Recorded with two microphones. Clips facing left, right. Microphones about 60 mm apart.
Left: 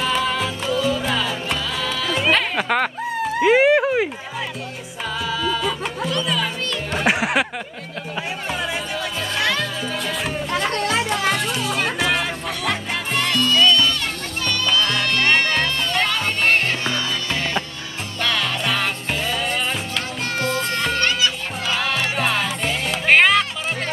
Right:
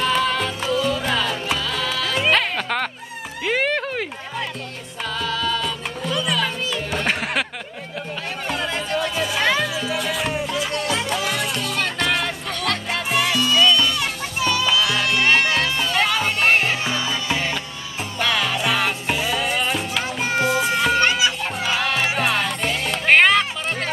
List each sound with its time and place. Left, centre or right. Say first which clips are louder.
0.0 s music: right 1 dB; centre
3.4 s a sound: left 7 dB; centre
5.2 s music: left 1 dB; centre
8.5 s music: right 3 dB; centre
10.5 s music: left 2 dB; left
11.1 s music: left 2 dB; centre
21.6 s music: even; centre